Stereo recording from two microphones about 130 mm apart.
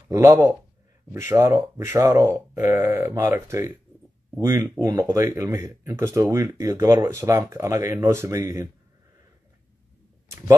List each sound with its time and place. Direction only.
0.1 s speech: 20° right (ahead or behind)